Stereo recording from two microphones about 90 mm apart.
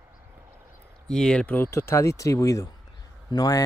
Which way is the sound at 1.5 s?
25° left (ahead or behind).